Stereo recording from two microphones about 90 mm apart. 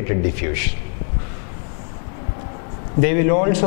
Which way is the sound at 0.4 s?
15° left (ahead or behind).